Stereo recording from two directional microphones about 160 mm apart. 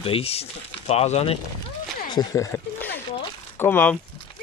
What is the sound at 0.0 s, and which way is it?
Speech, 35° left (ahead or behind).